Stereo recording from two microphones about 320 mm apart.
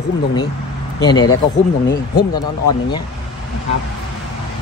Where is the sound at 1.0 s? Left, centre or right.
Centre.